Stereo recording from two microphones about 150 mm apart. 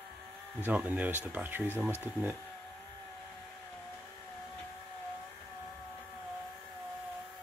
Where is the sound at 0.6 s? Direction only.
10° right (ahead or behind).